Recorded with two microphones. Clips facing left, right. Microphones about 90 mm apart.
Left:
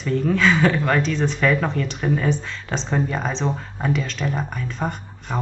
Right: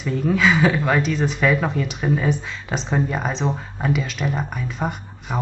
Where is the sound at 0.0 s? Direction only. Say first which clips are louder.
Even; 5° right (ahead or behind).